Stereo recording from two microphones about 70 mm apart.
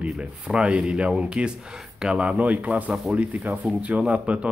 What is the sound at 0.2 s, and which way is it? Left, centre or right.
Speech, centre.